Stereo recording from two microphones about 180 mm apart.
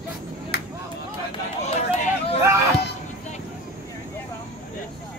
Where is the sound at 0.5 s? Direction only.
65° left (ahead or behind).